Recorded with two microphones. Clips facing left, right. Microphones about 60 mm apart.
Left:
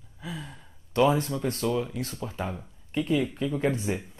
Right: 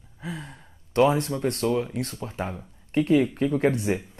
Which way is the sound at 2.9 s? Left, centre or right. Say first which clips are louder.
Right 6 dB; right.